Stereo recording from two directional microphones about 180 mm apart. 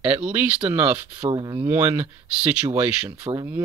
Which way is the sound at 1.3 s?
25° right (ahead or behind).